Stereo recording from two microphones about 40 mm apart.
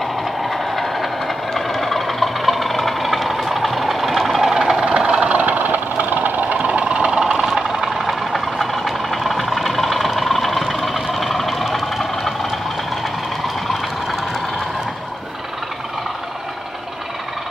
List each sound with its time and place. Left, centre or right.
0.0 s train: centre; by 6.5 s right
6.5 s vehicle: right
7.4 s vehicle: centre